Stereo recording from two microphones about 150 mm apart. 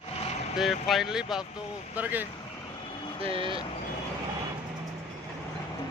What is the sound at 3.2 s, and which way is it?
Speech, 35° right (ahead or behind).